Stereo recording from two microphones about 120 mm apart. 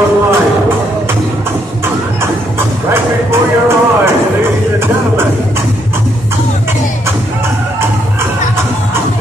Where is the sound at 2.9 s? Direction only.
20° right (ahead or behind).